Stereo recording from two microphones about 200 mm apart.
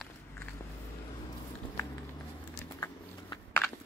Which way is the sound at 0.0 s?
10° left (ahead or behind).